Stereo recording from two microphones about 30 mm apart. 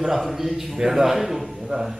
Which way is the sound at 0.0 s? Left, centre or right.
Centre.